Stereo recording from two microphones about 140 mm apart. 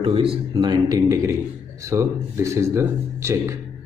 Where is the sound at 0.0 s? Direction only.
40° right (ahead or behind).